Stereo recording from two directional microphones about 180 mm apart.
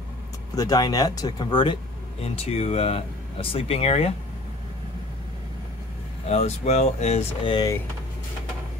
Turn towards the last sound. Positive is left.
turn(degrees=25)  # may be behind; listen again after turning